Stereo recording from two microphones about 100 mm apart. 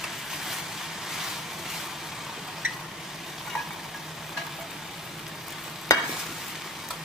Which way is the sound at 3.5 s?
5° left (ahead or behind).